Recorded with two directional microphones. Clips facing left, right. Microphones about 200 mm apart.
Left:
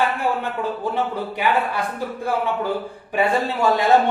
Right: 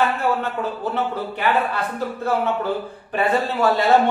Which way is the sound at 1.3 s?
10° left (ahead or behind).